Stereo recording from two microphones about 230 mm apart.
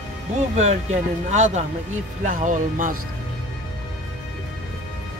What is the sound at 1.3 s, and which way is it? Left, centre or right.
Speech, right.